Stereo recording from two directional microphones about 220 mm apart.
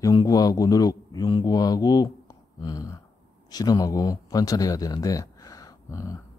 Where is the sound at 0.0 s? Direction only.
20° left (ahead or behind).